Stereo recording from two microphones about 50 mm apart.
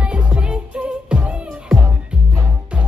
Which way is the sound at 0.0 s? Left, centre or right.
Right.